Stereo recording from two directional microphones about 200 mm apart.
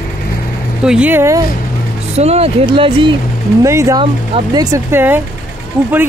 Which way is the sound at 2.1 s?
30° right (ahead or behind).